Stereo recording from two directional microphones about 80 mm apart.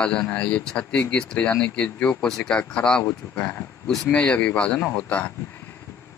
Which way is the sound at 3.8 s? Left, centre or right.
Centre.